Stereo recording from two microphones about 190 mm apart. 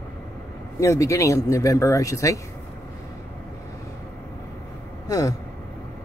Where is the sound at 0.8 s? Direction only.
15° left (ahead or behind).